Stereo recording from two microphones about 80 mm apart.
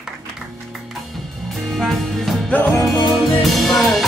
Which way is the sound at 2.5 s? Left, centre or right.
Left.